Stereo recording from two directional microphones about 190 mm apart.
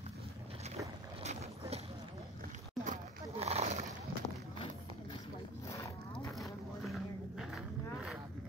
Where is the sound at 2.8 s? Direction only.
35° right (ahead or behind).